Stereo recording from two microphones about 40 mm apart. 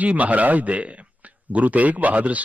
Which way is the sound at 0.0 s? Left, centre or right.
Right.